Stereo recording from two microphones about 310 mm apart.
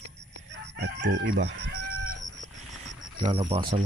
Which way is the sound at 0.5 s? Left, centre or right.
Right.